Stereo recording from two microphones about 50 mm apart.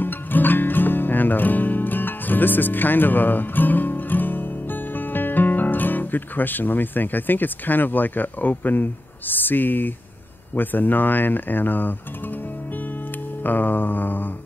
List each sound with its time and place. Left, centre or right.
0.0 s music: left
10.5 s speech: left
13.4 s music: left